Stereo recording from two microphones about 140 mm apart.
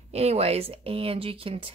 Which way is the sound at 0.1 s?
50° right (ahead or behind).